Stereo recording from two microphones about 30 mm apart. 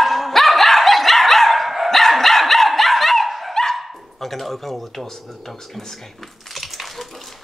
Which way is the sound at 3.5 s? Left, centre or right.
Centre.